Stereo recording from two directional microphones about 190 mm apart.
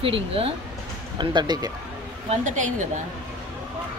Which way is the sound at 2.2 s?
40° right (ahead or behind).